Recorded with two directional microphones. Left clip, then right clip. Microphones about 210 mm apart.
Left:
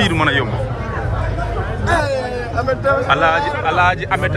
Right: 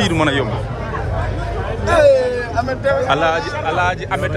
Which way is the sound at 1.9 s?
Centre (ahead or behind).